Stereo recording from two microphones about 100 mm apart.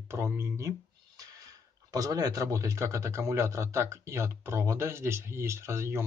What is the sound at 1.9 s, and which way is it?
Speech, 35° right (ahead or behind).